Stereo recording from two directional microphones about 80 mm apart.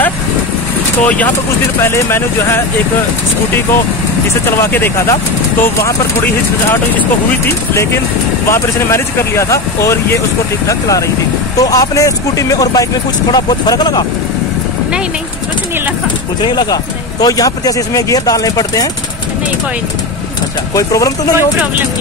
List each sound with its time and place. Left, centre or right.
1.0 s speech: centre
1.8 s speech: left
4.5 s speech: left
7.4 s speech: left
13.3 s speech: left
16.3 s speech: left
20.7 s speech: left